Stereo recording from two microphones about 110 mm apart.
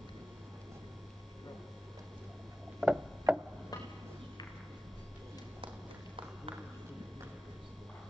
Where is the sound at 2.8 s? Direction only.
5° right (ahead or behind).